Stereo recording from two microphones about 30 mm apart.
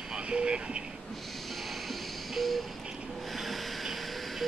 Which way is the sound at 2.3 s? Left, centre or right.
Centre.